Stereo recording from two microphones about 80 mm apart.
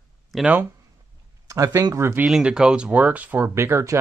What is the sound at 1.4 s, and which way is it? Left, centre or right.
Speech, right.